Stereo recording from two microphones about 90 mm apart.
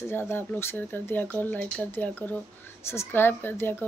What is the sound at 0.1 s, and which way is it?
Speech, 25° left (ahead or behind).